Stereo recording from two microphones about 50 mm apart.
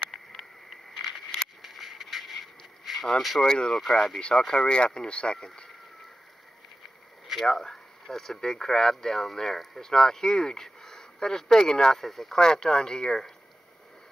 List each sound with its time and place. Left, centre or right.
0.1 s bee: centre
1.6 s scrape: centre
3.2 s speech: centre
3.4 s speech: centre
3.7 s speech: centre
4.2 s speech: centre
7.3 s speech: centre